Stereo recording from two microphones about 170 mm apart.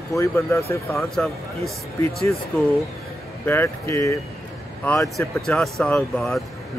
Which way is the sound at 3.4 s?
15° left (ahead or behind).